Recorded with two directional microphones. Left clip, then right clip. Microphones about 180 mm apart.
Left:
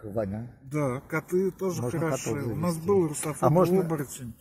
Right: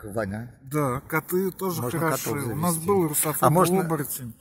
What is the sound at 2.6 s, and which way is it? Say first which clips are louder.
Speech: right 2 dB; 35° right (ahead or behind).